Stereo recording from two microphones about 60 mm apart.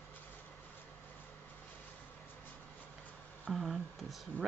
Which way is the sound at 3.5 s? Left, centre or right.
Centre.